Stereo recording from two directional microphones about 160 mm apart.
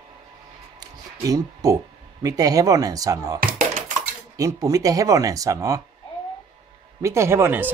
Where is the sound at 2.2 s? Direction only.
20° right (ahead or behind).